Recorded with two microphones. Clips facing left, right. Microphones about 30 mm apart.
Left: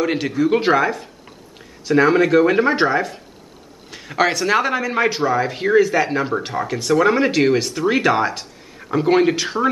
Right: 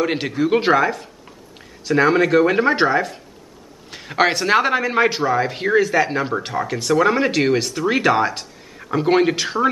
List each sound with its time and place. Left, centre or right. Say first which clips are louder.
0.0 s speech: left 1 dB; centre
5.0 s speech: even; centre